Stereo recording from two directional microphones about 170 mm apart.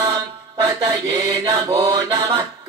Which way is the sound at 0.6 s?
15° right (ahead or behind).